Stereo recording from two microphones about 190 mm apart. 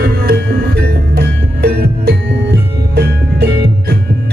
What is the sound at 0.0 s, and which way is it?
Music, 55° right (ahead or behind).